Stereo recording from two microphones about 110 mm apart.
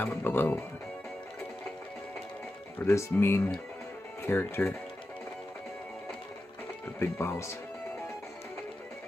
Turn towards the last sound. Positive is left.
turn(degrees=25)  # may be behind; listen again after turning